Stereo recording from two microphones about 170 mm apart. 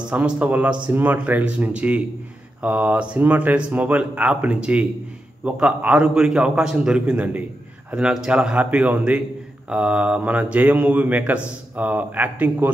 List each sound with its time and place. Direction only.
0.1 s a man's voice: 10° right (ahead or behind)